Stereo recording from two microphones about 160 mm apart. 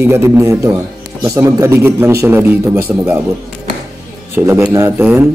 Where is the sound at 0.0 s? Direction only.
15° right (ahead or behind).